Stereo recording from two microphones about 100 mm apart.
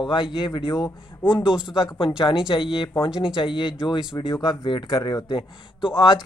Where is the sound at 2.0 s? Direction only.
60° left (ahead or behind).